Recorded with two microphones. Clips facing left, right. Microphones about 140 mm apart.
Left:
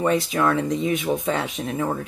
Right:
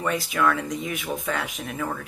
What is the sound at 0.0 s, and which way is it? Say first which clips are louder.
Speech: left 3 dB; 25° left (ahead or behind).